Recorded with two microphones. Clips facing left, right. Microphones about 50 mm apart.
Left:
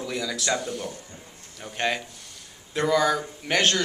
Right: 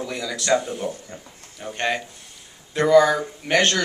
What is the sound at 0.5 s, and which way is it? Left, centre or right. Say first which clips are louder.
Speech: right 7 dB; centre.